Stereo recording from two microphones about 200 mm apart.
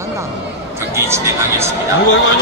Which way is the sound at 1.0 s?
15° right (ahead or behind).